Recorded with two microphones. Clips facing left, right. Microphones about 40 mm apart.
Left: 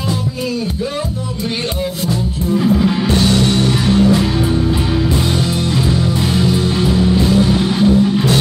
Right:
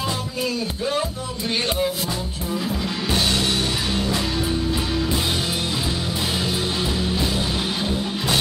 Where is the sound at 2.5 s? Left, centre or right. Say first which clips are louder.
Left 12 dB; centre.